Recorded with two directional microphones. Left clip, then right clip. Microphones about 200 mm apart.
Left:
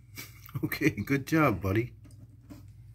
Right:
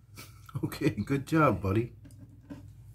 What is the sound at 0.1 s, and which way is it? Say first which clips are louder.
Speech: left 2 dB; 10° left (ahead or behind).